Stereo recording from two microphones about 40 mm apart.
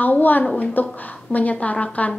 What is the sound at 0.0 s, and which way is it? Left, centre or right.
A woman's voice, left.